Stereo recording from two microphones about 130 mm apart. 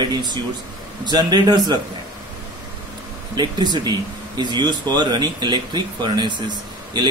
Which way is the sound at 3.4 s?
35° right (ahead or behind).